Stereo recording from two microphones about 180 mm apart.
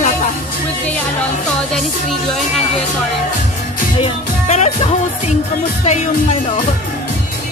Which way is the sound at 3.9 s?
35° left (ahead or behind).